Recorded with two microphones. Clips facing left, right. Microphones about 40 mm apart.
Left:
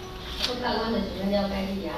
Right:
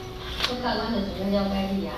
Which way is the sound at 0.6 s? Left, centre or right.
Left.